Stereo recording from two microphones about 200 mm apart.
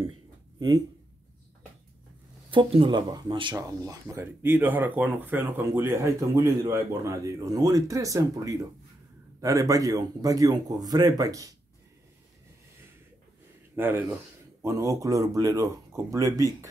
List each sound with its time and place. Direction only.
0.6 s speech: 20° right (ahead or behind)
2.5 s speech: 25° right (ahead or behind)
13.7 s speech: 10° right (ahead or behind)